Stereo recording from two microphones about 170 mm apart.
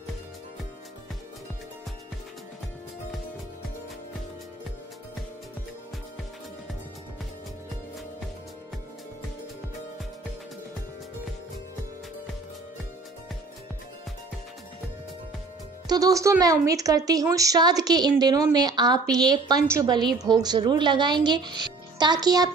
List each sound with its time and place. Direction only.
15.9 s speech: 20° right (ahead or behind)